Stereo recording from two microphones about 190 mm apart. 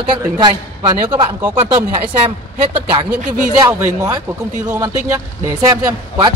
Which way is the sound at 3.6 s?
20° right (ahead or behind).